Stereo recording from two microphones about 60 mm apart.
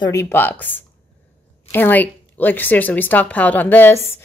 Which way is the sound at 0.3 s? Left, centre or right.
Left.